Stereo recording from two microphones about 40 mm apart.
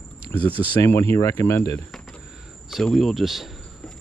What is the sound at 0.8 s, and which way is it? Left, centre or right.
Speech, left.